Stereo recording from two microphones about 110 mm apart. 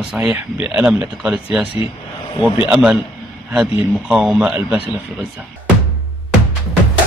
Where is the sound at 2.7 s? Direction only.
10° right (ahead or behind).